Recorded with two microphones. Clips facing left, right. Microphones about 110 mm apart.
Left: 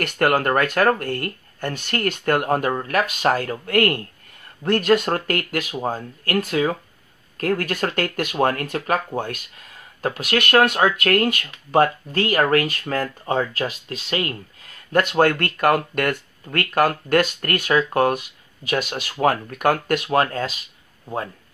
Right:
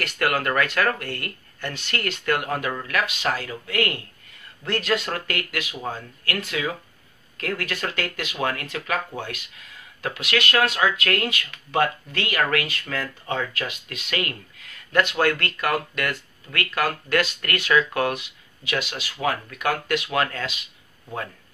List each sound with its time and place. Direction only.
0.0 s speech: 45° left (ahead or behind)